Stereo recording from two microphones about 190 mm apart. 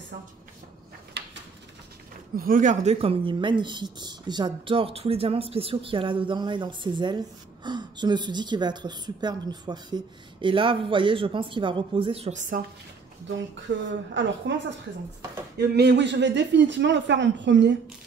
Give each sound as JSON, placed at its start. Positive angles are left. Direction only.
{"t": 2.3, "sound": "speech", "side_deg": -45}
{"t": 13.7, "sound": "speech", "side_deg": -70}
{"t": 15.5, "sound": "speech", "side_deg": -60}